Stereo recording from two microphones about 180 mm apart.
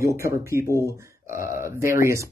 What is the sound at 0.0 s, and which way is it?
Speech, 15° right (ahead or behind).